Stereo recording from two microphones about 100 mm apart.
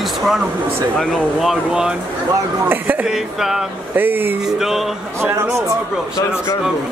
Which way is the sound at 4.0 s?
20° right (ahead or behind).